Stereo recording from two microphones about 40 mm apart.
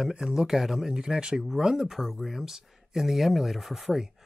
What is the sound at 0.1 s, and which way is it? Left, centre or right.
Speech, centre.